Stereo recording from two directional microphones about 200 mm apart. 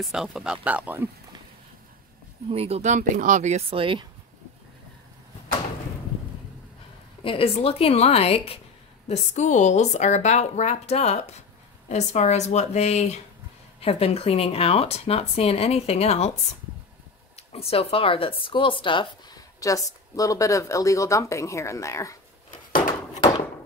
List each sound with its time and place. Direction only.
0.0 s speech: centre (ahead or behind)
2.5 s speech: 30° right (ahead or behind)
7.2 s a woman's voice: 30° left (ahead or behind)
17.5 s speech: 30° left (ahead or behind)